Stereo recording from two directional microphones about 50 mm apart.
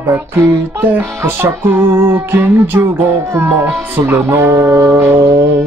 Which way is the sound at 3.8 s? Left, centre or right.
Right.